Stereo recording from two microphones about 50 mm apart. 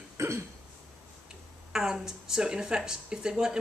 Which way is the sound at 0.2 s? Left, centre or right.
Right.